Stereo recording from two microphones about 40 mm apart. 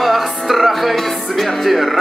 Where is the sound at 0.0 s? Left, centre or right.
Centre.